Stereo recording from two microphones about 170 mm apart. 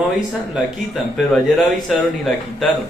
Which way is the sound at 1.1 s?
Centre (ahead or behind).